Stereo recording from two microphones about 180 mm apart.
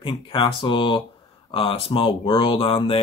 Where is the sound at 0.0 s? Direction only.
30° left (ahead or behind).